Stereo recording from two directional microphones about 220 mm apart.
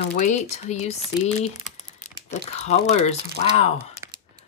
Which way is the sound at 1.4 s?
30° left (ahead or behind).